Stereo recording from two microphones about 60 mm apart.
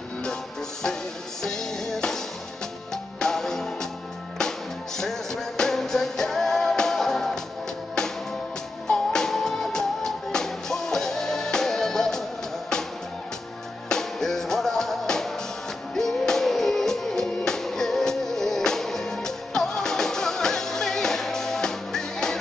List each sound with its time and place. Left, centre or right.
1.4 s music: centre
8.8 s music: centre
13.8 s music: centre